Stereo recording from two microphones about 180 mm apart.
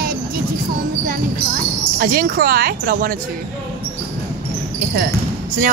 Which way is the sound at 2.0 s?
55° right (ahead or behind).